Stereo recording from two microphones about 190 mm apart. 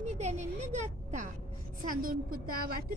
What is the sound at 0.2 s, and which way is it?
A woman's voice, 35° right (ahead or behind).